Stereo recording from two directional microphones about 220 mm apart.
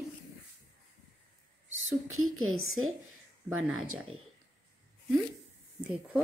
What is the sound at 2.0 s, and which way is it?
Speech, 70° right (ahead or behind).